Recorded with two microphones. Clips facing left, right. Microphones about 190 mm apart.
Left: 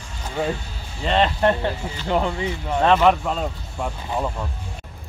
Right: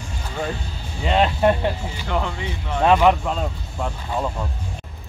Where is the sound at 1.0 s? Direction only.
5° right (ahead or behind).